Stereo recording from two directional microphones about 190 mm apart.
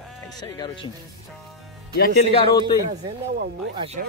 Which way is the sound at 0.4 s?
20° left (ahead or behind).